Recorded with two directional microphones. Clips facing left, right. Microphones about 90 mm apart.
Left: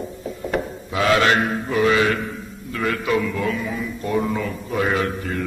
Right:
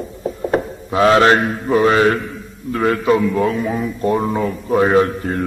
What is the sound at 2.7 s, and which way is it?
A man's voice, 35° right (ahead or behind).